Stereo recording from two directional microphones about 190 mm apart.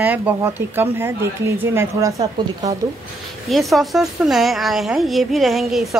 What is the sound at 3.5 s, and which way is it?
A woman's voice, centre (ahead or behind).